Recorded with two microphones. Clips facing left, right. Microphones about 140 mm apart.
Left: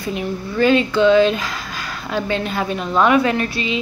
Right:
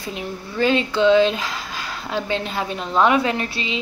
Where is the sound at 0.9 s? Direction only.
25° right (ahead or behind).